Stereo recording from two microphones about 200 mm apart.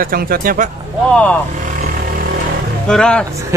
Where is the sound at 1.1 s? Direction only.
5° left (ahead or behind).